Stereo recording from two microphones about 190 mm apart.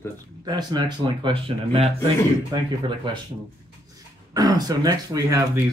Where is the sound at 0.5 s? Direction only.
25° right (ahead or behind).